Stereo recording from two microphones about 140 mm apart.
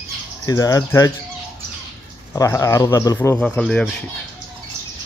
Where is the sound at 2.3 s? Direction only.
20° left (ahead or behind).